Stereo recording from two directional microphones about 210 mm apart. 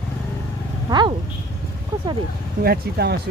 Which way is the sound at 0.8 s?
20° right (ahead or behind).